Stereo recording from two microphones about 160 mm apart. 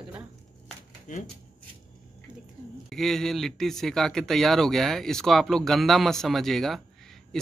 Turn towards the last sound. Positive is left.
turn(degrees=0)  # may be behind; listen again after turning